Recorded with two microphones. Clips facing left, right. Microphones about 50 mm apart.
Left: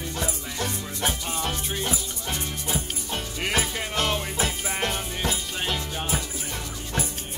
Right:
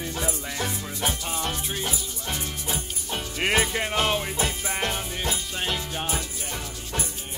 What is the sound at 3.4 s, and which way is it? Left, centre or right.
Music, centre.